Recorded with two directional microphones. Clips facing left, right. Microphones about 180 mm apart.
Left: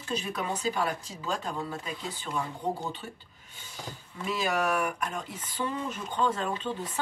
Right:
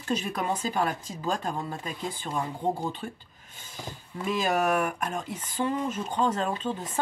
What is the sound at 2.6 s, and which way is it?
Speech, 25° right (ahead or behind).